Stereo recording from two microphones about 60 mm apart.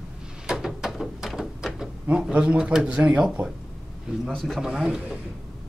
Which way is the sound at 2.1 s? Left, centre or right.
Centre.